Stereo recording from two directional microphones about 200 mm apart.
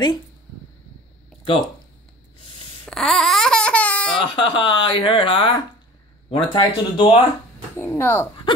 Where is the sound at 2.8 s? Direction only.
Centre (ahead or behind).